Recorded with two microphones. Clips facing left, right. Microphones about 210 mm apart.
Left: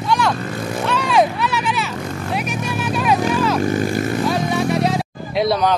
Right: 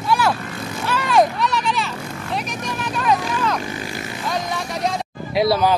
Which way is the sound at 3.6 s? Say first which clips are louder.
Left 10 dB; 45° left (ahead or behind).